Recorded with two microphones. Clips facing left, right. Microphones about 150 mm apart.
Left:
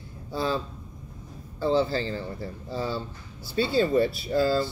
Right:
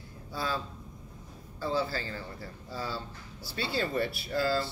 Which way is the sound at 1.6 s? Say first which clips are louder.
Left 7 dB; 25° left (ahead or behind).